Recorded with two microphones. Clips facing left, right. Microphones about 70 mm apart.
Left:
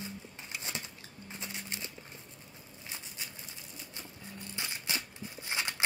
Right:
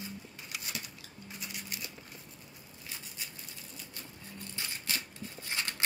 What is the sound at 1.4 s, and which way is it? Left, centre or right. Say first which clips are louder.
Music: left 1 dB; left.